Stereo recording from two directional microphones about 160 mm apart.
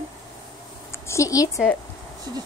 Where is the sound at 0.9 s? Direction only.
20° left (ahead or behind).